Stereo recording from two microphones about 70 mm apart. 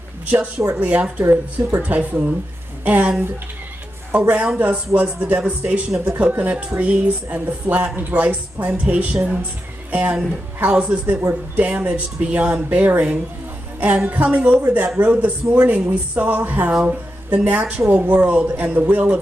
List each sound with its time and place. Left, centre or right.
0.3 s a woman's voice: right
4.1 s a woman's voice: centre
16.7 s a woman's voice: centre